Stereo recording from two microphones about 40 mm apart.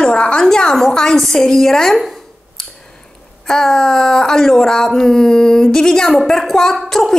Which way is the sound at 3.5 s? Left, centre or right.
Centre.